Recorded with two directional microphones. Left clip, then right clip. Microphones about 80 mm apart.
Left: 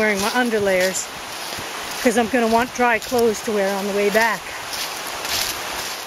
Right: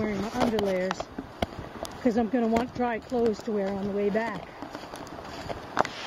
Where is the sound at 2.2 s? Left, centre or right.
Left.